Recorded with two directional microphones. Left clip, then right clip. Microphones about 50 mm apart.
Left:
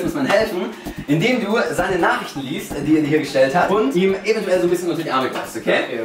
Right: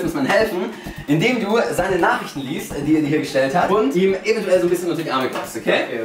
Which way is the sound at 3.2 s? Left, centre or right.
Centre.